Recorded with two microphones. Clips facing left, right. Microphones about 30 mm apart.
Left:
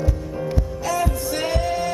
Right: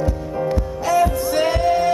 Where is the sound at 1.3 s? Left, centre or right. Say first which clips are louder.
Right 6 dB; centre.